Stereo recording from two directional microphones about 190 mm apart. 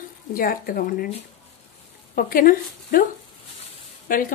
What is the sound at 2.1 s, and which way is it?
Speech, 50° left (ahead or behind).